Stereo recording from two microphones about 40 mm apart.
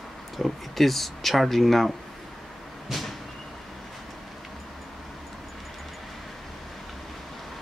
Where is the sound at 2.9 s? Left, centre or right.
Centre.